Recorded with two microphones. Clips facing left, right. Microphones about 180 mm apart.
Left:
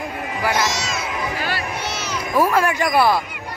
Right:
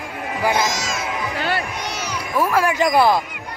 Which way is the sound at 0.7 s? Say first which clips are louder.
Even; 50° right (ahead or behind).